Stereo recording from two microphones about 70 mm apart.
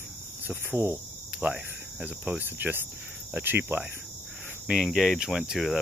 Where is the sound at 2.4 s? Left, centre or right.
Right.